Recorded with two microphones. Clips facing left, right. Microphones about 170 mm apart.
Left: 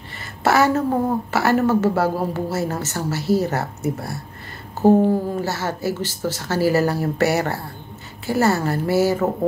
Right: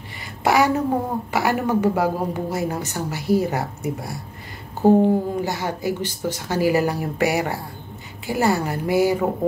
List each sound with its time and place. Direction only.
0.4 s speech: 15° right (ahead or behind)